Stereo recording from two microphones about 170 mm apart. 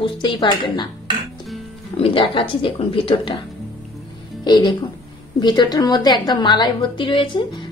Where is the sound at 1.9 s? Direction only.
30° left (ahead or behind).